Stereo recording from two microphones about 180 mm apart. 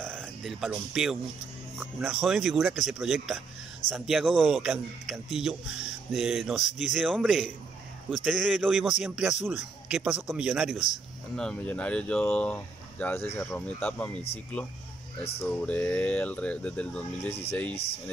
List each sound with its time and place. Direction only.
0.0 s a sound: 5° left (ahead or behind)
1.8 s a man's voice: 5° right (ahead or behind)
15.4 s speech: 10° left (ahead or behind)